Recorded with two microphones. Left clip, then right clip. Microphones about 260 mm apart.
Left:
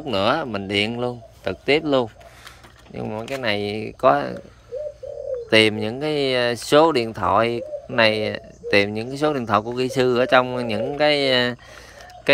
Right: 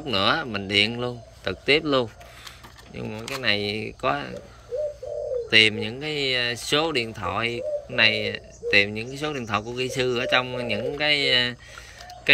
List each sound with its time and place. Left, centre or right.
0.0 s speech: centre
5.5 s speech: centre